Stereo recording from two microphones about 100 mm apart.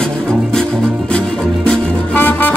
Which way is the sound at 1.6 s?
15° left (ahead or behind).